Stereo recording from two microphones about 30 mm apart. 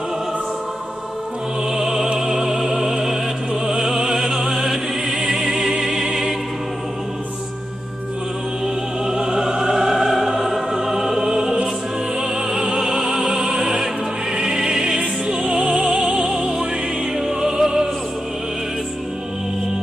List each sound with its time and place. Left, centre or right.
1.8 s music: centre
3.6 s opera: centre
4.6 s music: centre
9.0 s music: right